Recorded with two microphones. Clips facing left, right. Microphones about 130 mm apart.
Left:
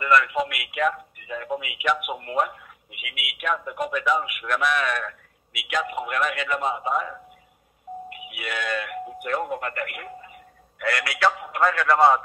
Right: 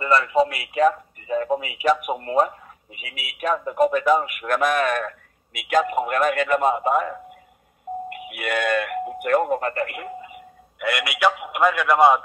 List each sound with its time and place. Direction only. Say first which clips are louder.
0.0 s a man's voice: right 3 dB; 30° right (ahead or behind); by 9.6 s 55° right (ahead or behind)
9.6 s a man's voice: right 5 dB; 30° right (ahead or behind); by 12.2 s 15° right (ahead or behind)